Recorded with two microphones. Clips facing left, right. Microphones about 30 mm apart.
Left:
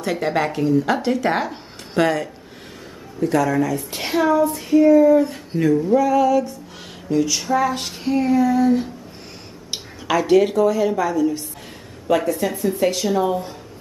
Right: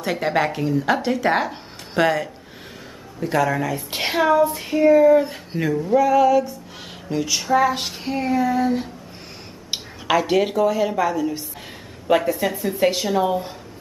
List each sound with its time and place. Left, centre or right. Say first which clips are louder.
0.0 s speech: even; centre